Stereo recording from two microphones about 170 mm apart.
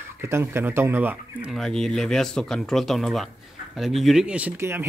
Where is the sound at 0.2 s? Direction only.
15° right (ahead or behind).